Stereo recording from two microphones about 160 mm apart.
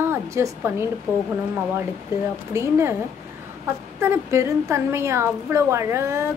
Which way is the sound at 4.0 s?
15° right (ahead or behind).